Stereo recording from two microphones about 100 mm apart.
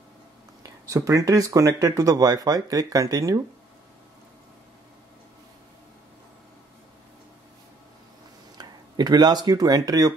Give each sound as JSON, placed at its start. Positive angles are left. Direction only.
{"t": 0.7, "sound": "speech", "side_deg": -35}
{"t": 8.5, "sound": "speech", "side_deg": -45}